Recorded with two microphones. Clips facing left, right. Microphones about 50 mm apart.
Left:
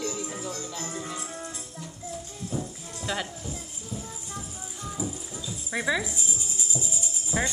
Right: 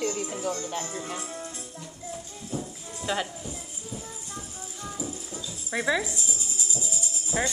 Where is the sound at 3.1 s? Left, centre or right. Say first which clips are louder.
Right 2 dB; centre.